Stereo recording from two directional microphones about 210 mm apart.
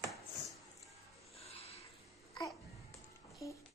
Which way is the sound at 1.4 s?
30° left (ahead or behind).